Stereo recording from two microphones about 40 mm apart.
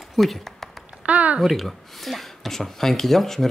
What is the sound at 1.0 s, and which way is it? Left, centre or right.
Speech, right.